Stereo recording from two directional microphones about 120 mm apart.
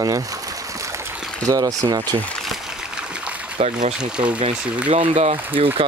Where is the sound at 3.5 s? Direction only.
65° right (ahead or behind).